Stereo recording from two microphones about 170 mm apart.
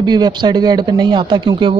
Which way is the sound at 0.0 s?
25° right (ahead or behind).